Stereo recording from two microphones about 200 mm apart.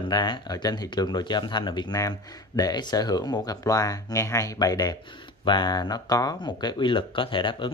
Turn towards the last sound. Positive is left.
turn(degrees=25)  # may be behind; listen again after turning